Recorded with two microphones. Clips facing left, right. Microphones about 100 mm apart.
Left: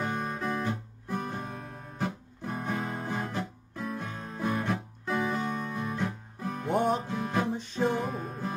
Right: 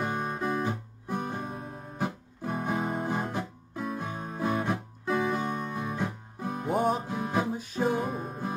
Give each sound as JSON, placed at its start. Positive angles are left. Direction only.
{"t": 0.0, "sound": "guitar", "side_deg": -5}
{"t": 1.0, "sound": "music", "side_deg": -15}
{"t": 5.1, "sound": "music", "side_deg": 0}
{"t": 7.1, "sound": "music", "side_deg": -15}